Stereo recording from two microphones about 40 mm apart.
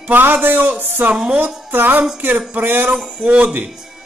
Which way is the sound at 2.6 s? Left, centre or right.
Right.